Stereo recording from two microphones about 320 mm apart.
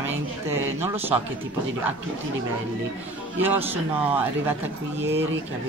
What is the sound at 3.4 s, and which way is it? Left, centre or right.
A man's voice, centre.